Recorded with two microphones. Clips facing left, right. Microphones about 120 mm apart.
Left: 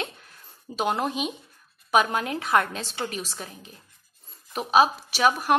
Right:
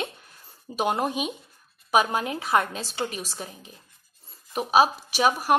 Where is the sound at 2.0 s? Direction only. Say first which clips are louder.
Even; 25° right (ahead or behind).